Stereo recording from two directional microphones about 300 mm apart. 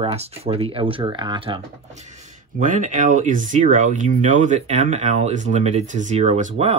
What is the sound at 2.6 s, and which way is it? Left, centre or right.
Speech, right.